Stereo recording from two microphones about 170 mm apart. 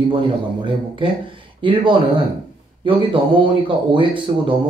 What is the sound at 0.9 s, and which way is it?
A man's voice, 30° right (ahead or behind).